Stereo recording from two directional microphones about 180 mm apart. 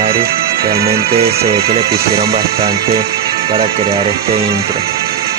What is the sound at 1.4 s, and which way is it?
Speech, 35° right (ahead or behind).